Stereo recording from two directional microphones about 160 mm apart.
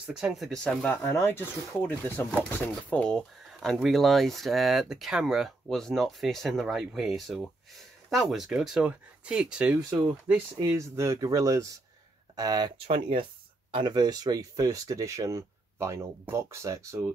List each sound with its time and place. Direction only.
0.0 s speech: 5° right (ahead or behind)
0.9 s speech: 15° left (ahead or behind); by 9.8 s 5° right (ahead or behind)
10.6 s speech: 15° right (ahead or behind)